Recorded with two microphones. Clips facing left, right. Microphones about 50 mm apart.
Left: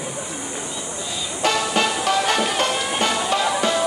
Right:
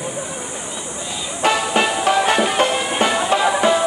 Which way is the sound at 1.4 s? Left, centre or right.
Centre.